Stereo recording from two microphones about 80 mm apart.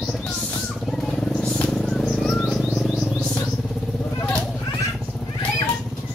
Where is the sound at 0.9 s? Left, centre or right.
Centre.